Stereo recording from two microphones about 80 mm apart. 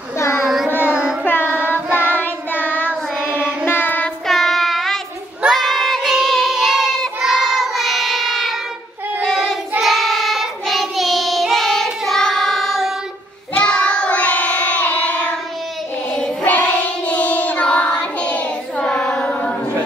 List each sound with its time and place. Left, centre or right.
0.2 s child singing: left
0.8 s music: centre
1.2 s carnatic music: left
1.7 s child singing: left
3.3 s child singing: centre
3.6 s child singing: left
4.3 s child singing: centre